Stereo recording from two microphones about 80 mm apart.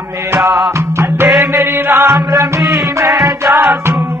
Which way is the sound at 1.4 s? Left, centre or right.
Right.